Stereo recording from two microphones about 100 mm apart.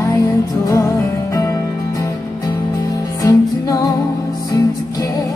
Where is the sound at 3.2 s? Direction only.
35° left (ahead or behind).